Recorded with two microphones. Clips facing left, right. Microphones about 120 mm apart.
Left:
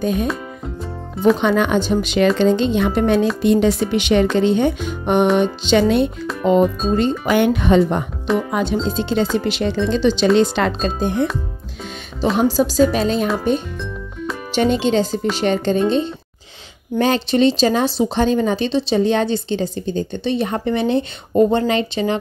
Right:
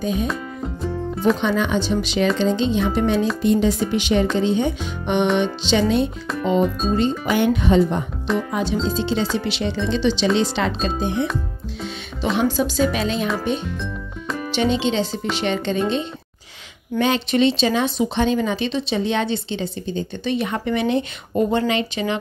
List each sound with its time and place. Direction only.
0.0 s speech: 55° left (ahead or behind)
1.4 s speech: 60° left (ahead or behind)
3.4 s speech: 70° left (ahead or behind); by 13.3 s 40° left (ahead or behind)
14.5 s speech: 45° left (ahead or behind)
17.0 s speech: 40° left (ahead or behind)